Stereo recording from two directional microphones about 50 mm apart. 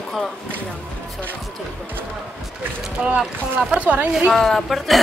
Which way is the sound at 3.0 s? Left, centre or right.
Centre.